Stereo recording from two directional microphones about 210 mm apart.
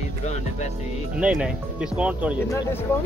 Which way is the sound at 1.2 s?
5° right (ahead or behind).